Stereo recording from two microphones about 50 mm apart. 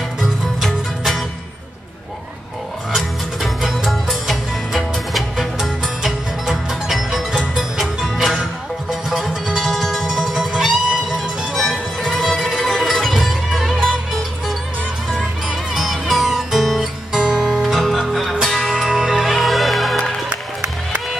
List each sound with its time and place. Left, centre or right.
0.2 s music: centre
3.0 s music: centre
11.6 s music: centre
15.7 s music: centre
17.2 s guitar: centre
17.5 s music: centre
20.2 s music: right